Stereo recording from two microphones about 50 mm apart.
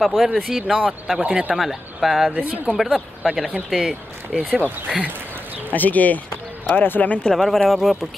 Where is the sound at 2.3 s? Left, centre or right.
Right.